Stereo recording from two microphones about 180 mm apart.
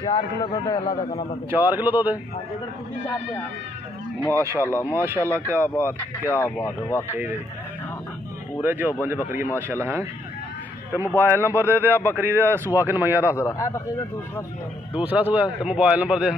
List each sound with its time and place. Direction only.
0.0 s a man's voice: 25° left (ahead or behind)
1.5 s speech: 10° right (ahead or behind)
4.3 s speech: 15° right (ahead or behind)
6.2 s speech: 15° left (ahead or behind)
8.5 s speech: 10° right (ahead or behind)
11.1 s speech: 10° right (ahead or behind)
13.4 s speech: 15° left (ahead or behind)
15.0 s speech: 10° right (ahead or behind)